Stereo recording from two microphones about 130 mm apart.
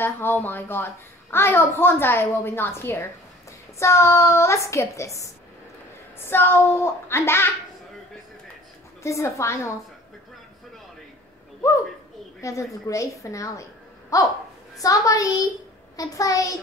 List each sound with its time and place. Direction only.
0.0 s a woman's voice: 15° left (ahead or behind)
9.0 s a woman's voice: 20° left (ahead or behind)
11.6 s a woman's voice: 20° left (ahead or behind)